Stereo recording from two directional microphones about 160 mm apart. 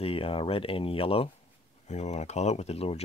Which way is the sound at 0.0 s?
35° left (ahead or behind).